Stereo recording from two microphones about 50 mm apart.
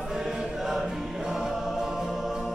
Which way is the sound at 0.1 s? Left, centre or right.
Centre.